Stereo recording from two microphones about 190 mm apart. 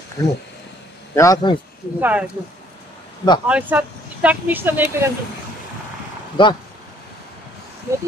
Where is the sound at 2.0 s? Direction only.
10° right (ahead or behind).